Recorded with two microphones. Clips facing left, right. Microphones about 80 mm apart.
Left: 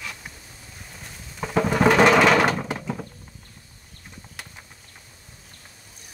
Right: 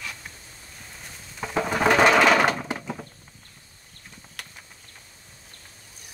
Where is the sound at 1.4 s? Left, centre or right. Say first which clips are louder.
Left 3 dB; centre.